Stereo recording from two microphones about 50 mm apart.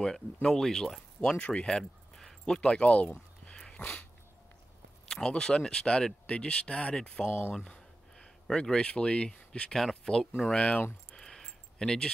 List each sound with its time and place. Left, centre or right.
0.0 s speech: centre
3.4 s dog: centre
5.0 s a sound: centre
5.3 s speech: centre
7.2 s speech: left
7.5 s speech: centre
10.8 s speech: left
11.1 s a sound: centre